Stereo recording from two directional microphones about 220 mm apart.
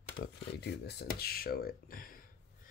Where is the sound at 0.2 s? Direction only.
50° left (ahead or behind).